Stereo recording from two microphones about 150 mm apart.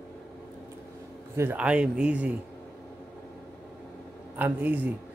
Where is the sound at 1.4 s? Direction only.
10° right (ahead or behind).